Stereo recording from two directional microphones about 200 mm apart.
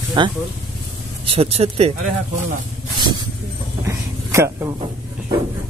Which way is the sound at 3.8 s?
15° right (ahead or behind).